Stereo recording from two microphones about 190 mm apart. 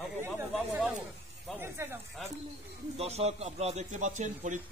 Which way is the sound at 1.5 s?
15° right (ahead or behind).